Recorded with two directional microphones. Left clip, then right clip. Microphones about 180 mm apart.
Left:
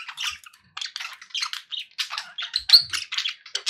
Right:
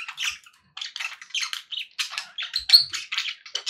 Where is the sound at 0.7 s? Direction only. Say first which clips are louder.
Left 2 dB; 45° left (ahead or behind).